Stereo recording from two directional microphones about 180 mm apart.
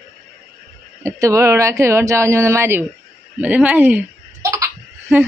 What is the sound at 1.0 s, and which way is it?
Speech, 15° right (ahead or behind).